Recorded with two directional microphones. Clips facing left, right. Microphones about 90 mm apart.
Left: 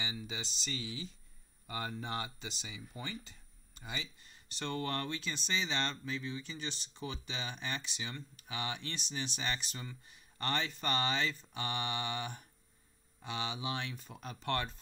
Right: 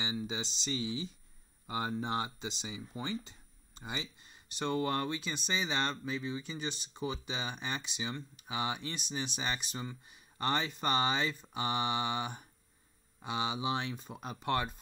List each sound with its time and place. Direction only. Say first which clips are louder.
0.0 s speech: right 5 dB; 25° right (ahead or behind)